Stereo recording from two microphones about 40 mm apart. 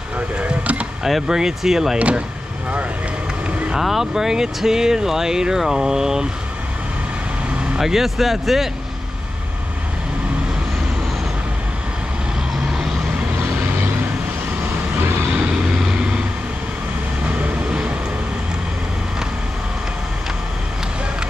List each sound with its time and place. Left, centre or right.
0.4 s a sound: right
1.2 s speech: centre
2.0 s speech: right
3.8 s speech: centre
7.8 s speech: centre
15.7 s vehicle: centre
17.2 s vehicle: right